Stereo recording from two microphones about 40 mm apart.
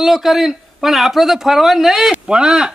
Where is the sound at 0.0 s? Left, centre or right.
Centre.